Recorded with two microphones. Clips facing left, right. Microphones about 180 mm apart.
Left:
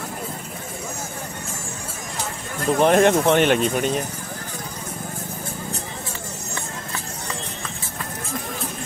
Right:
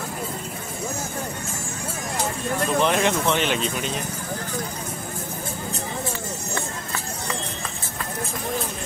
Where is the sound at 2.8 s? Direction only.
50° left (ahead or behind).